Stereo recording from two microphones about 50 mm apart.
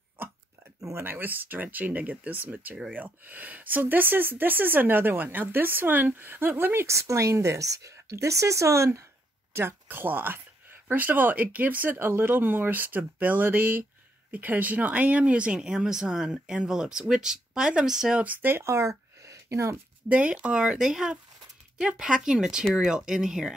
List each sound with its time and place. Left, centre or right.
0.2 s a sound: right
1.0 s speech: right
6.9 s speech: right
9.5 s speech: right; by 18.2 s centre
18.2 s speech: right
18.6 s a sound: right
20.1 s speech: right
20.5 s speech: centre